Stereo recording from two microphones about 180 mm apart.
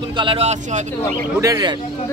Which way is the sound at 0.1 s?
30° right (ahead or behind).